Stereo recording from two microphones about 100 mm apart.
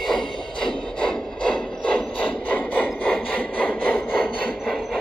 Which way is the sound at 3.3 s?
15° left (ahead or behind).